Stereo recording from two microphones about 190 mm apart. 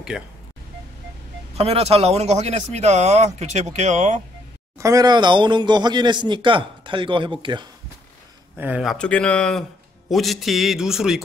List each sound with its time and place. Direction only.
0.1 s speech: 5° right (ahead or behind)
1.6 s speech: 30° right (ahead or behind)
4.7 s speech: 15° right (ahead or behind)
8.5 s speech: 5° right (ahead or behind)
8.9 s speech: 5° left (ahead or behind)